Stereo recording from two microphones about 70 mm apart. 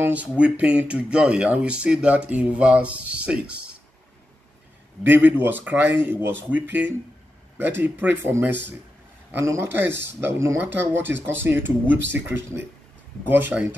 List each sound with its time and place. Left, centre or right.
0.0 s speech: centre
5.0 s speech: right